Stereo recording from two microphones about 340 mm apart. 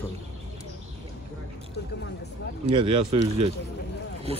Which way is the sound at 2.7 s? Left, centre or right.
Centre.